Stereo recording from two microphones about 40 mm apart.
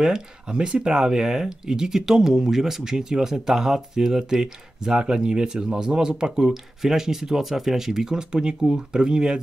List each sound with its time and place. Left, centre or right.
0.0 s speech: centre